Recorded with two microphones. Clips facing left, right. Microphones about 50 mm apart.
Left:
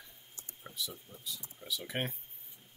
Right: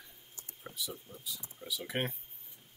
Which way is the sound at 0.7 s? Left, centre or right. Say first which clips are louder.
Right 1 dB; centre.